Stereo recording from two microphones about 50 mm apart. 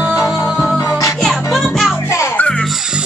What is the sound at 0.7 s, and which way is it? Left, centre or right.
Music, left.